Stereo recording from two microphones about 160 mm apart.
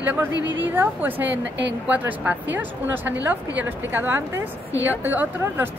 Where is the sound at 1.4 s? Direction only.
90° right.